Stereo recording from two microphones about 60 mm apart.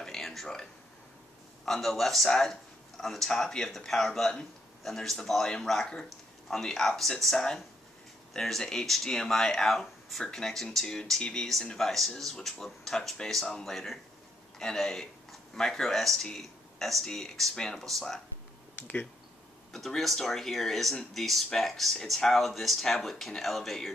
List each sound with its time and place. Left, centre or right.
0.0 s a sound: centre
1.7 s speech: centre
18.8 s speech: left
19.7 s speech: centre